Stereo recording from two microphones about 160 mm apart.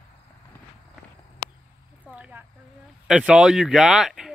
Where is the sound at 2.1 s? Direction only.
10° right (ahead or behind).